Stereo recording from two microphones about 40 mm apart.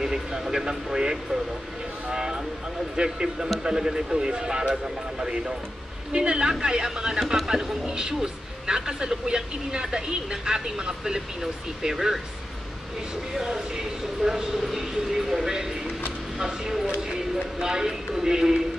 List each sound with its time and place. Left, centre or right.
0.0 s a man's voice: centre
6.1 s a man's voice: right
13.3 s a man's voice: centre